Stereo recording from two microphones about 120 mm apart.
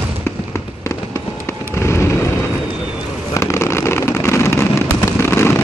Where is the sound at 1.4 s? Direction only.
20° left (ahead or behind).